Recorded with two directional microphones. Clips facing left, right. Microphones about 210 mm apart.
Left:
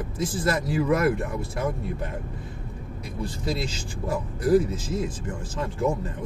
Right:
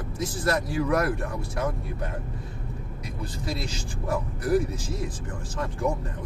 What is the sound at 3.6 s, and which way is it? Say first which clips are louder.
Speech: left 2 dB; 25° left (ahead or behind).